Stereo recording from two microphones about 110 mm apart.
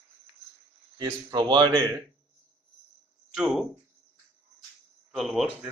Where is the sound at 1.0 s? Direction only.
40° right (ahead or behind).